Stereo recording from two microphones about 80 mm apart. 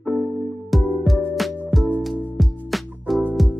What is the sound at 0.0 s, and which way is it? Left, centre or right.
Music, centre.